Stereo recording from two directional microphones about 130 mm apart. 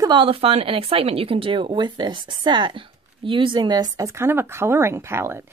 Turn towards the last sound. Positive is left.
turn(degrees=-20)  # may be behind; listen again after turning